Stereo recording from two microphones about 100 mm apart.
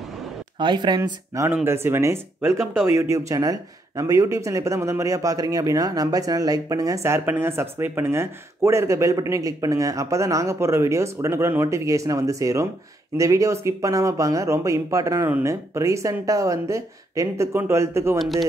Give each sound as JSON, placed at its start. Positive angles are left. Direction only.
{"t": 0.6, "sound": "speech", "side_deg": -50}
{"t": 1.5, "sound": "speech", "side_deg": -25}